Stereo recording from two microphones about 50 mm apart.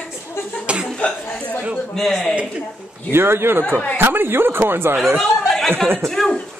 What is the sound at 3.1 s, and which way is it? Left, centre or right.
A man's voice, right.